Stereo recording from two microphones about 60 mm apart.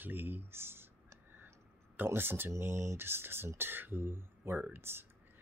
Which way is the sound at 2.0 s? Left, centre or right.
Right.